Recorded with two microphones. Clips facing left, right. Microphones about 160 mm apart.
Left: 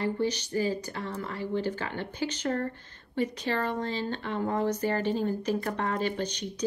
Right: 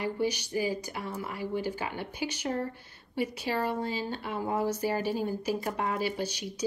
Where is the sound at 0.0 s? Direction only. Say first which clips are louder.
Left 1 dB; 10° right (ahead or behind).